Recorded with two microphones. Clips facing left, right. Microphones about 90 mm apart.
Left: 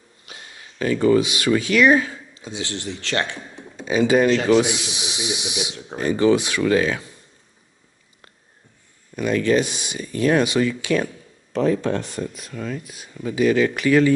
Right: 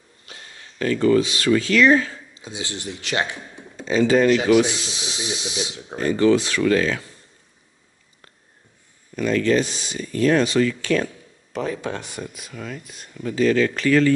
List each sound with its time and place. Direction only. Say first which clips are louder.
0.2 s speech: left 1 dB; 15° left (ahead or behind)
2.3 s a man's voice: left 2 dB; 15° right (ahead or behind)
3.7 s speech: even; 15° left (ahead or behind)
4.3 s a man's voice: right 1 dB; 10° right (ahead or behind)
4.6 s speech: even; 15° left (ahead or behind)
9.1 s speech: even; 15° left (ahead or behind)
11.5 s speech: left 6 dB; 5° right (ahead or behind)
13.1 s speech: even; 10° left (ahead or behind)